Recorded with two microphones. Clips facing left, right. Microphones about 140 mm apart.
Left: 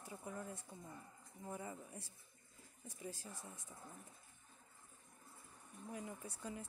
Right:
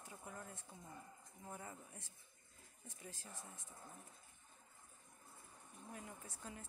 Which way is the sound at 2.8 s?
10° left (ahead or behind).